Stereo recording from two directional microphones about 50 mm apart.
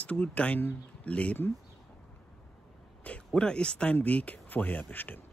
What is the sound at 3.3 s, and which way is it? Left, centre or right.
Speech, centre.